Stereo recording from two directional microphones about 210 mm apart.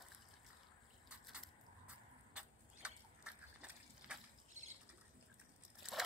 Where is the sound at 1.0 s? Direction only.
5° right (ahead or behind).